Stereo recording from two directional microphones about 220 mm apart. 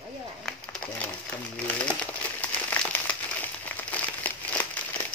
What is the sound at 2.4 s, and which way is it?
Crumpling, 5° left (ahead or behind).